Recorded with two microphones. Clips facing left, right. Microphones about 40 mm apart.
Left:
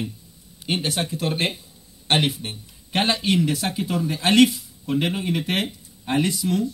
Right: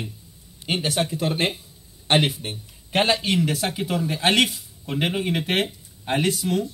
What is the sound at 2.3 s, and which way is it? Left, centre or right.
Speech, right.